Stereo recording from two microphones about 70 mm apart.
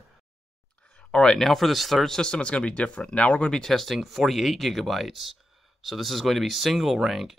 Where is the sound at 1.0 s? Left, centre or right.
Centre.